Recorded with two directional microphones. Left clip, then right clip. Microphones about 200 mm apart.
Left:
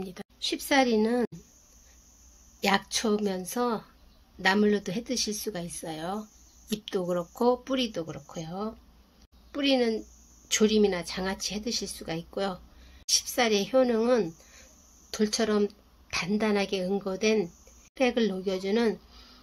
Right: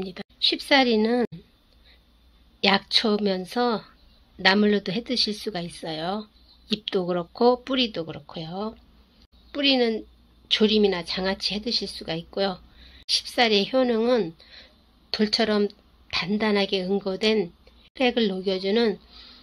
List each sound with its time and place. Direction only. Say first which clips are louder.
0.0 s a woman's voice: right 10 dB; 10° right (ahead or behind)
2.6 s a woman's voice: right 6 dB; 15° right (ahead or behind)
12.3 s a sound: right 6 dB; 10° right (ahead or behind)
13.3 s a woman's voice: right 5 dB; 10° right (ahead or behind)
14.6 s a sound: right 4 dB; 15° right (ahead or behind)
16.1 s a woman's voice: right 4 dB; 10° right (ahead or behind)